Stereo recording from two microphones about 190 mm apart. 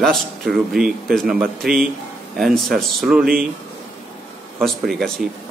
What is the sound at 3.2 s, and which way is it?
Speech, 50° right (ahead or behind).